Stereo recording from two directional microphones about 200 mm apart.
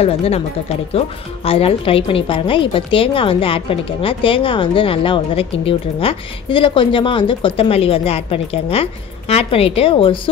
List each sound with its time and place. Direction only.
0.0 s speech: 30° left (ahead or behind)